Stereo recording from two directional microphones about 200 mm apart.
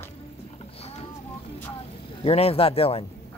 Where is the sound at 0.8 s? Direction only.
30° left (ahead or behind).